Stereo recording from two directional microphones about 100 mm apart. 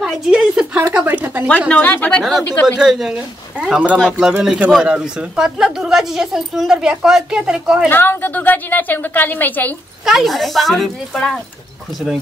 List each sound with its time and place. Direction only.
0.3 s a woman's voice: 10° right (ahead or behind)
1.7 s speech: 15° left (ahead or behind)
2.8 s speech: 5° right (ahead or behind)
7.9 s a woman's voice: 20° left (ahead or behind)
10.0 s speech: centre (ahead or behind)